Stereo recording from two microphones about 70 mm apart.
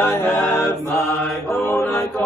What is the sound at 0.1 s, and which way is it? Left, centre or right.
Chant, left.